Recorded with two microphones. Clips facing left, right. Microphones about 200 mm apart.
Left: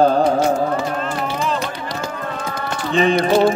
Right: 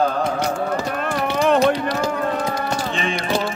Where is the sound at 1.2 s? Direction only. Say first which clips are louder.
Right 10 dB; 65° right (ahead or behind).